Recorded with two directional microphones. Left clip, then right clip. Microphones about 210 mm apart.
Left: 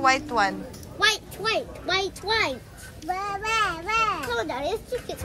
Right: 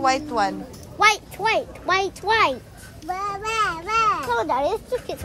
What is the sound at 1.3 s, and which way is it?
Speech, 50° right (ahead or behind).